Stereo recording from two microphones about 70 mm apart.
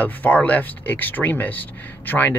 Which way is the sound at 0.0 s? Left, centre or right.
Left.